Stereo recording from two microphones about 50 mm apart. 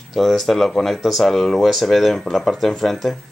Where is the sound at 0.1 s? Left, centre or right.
Centre.